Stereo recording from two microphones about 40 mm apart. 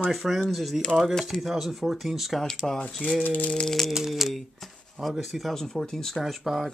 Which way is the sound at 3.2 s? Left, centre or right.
Left.